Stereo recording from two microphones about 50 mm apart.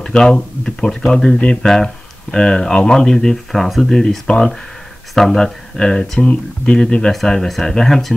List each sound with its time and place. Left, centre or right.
0.0 s speech: centre